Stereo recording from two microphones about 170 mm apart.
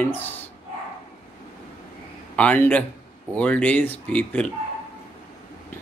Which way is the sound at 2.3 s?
10° left (ahead or behind).